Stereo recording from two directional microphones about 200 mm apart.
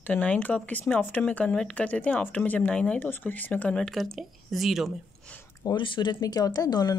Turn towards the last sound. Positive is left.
turn(degrees=20)  # may be behind; listen again after turning